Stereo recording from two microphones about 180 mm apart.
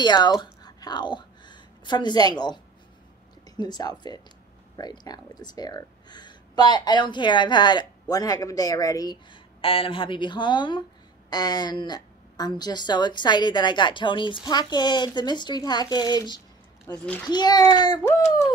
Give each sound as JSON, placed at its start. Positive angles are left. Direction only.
{"t": 0.0, "sound": "speech", "side_deg": 25}
{"t": 0.4, "sound": "a sound", "side_deg": 20}
{"t": 3.4, "sound": "speech", "side_deg": 25}
{"t": 16.8, "sound": "a child's voice", "side_deg": 10}
{"t": 17.3, "sound": "speech", "side_deg": 25}